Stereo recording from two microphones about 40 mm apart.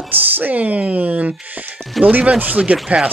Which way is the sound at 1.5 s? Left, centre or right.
Right.